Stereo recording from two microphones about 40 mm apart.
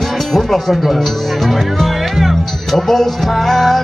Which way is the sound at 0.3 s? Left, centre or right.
Centre.